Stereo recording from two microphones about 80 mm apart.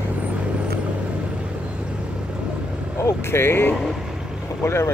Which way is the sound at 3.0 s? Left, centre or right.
Left.